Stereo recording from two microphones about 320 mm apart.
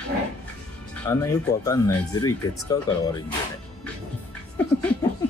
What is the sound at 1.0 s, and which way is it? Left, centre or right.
Speech, centre.